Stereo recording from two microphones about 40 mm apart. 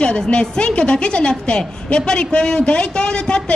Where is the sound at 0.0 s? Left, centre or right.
Left.